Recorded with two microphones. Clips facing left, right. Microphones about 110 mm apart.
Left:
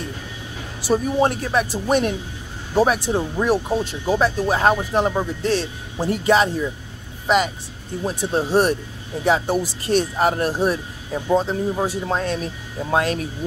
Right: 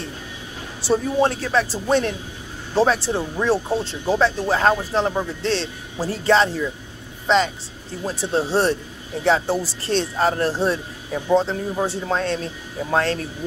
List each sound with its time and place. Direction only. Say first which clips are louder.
0.8 s speech: even; 15° left (ahead or behind)